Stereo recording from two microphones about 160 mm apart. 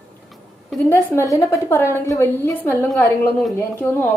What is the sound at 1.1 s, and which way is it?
Speech, 20° left (ahead or behind).